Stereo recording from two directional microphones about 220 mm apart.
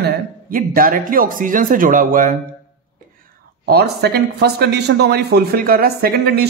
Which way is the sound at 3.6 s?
45° right (ahead or behind).